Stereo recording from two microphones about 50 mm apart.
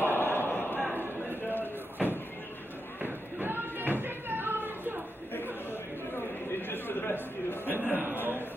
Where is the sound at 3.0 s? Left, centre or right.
Right.